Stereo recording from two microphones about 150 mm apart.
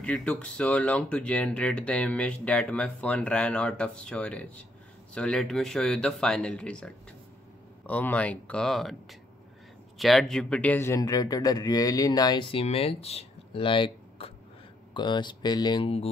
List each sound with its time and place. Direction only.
0.0 s speech: 10° left (ahead or behind)
9.9 s speech: centre (ahead or behind); by 15.9 s 30° left (ahead or behind)